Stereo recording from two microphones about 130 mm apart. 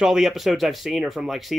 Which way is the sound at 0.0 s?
5° right (ahead or behind).